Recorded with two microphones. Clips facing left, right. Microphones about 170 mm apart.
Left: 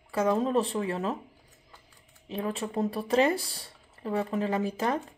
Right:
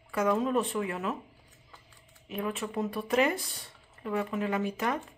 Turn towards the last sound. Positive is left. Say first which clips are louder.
# left 2 dB
turn(degrees=30)  # may be behind; listen again after turning